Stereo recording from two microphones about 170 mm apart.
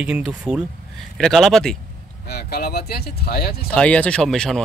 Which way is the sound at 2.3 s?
70° left (ahead or behind).